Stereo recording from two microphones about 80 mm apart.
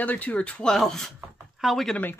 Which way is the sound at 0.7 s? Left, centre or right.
Centre.